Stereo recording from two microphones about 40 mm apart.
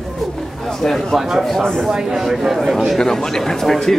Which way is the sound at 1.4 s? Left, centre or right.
Centre.